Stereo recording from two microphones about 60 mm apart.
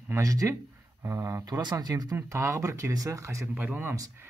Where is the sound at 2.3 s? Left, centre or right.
Right.